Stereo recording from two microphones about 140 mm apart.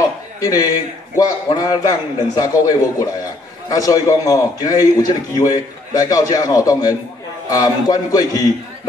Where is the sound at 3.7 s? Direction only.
25° left (ahead or behind).